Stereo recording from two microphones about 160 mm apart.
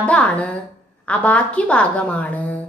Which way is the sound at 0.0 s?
10° left (ahead or behind).